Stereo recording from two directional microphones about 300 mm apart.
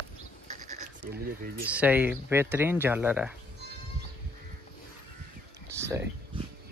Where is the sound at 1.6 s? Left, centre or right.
Centre.